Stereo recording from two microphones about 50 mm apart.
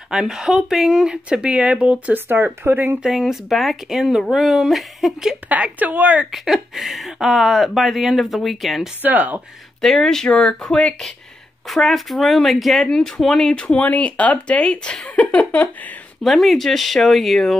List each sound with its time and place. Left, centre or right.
0.1 s speech: centre
2.1 s speech: right
3.1 s speech: centre
5.5 s speech: right
6.3 s speech: centre
9.0 s speech: right
9.8 s speech: centre
11.6 s speech: centre
13.7 s speech: left
15.0 s a sound: left
16.2 s speech: centre